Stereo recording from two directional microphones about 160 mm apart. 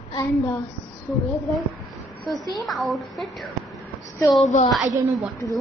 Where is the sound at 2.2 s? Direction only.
Centre (ahead or behind).